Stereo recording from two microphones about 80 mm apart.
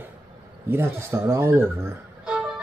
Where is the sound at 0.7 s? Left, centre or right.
Right.